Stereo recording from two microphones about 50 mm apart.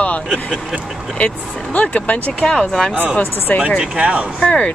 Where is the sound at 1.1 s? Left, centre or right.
Left.